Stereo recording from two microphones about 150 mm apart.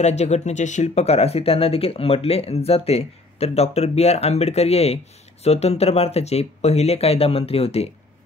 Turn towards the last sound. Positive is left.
turn(degrees=45)  # may be behind; listen again after turning